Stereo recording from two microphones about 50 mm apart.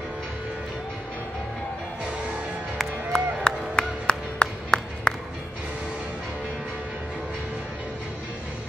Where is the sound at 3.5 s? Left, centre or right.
Centre.